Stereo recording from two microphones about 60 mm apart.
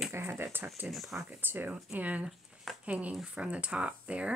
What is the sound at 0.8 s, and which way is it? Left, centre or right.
Speech, centre.